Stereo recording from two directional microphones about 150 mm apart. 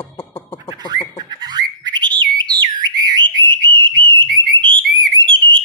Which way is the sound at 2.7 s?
30° right (ahead or behind).